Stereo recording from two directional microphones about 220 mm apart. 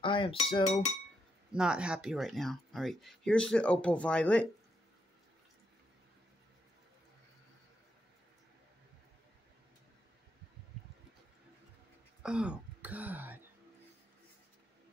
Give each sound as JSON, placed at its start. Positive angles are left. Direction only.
{"t": 0.0, "sound": "a sound", "side_deg": 20}
{"t": 1.5, "sound": "speech", "side_deg": -5}
{"t": 12.2, "sound": "throat clearing", "side_deg": -5}